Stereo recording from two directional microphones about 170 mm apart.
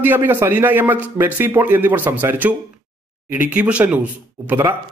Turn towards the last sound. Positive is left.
turn(degrees=-15)  # may be behind; listen again after turning